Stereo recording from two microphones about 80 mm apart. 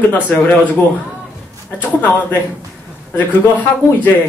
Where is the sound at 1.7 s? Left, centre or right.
Left.